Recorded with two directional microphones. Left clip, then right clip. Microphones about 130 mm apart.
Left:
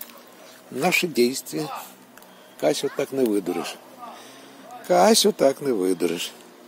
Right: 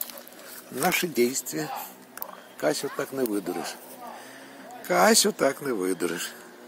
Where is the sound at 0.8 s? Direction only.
20° left (ahead or behind).